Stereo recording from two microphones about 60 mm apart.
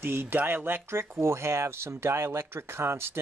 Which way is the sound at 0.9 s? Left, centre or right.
Right.